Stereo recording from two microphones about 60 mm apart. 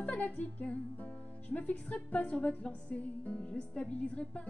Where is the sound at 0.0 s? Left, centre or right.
Left.